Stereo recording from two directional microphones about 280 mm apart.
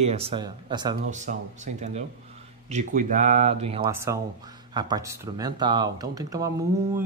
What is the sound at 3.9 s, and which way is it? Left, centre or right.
Speech, centre.